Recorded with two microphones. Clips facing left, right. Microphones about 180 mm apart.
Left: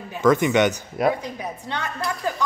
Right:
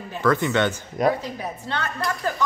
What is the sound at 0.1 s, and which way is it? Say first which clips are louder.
Speech: left 3 dB; 15° left (ahead or behind).